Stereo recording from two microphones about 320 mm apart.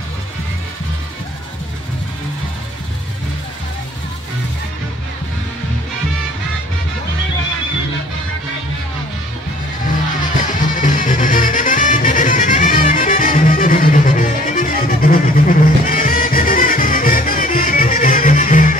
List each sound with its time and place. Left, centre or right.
10.6 s music: left